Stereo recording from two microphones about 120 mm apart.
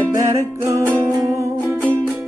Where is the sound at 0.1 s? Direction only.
25° right (ahead or behind).